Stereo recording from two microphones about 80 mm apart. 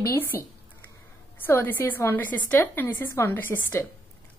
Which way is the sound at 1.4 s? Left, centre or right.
Left.